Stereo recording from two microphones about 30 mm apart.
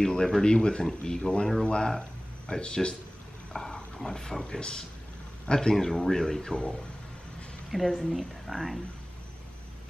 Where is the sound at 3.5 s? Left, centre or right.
Centre.